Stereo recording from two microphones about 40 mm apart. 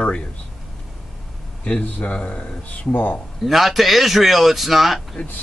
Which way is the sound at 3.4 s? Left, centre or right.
Centre.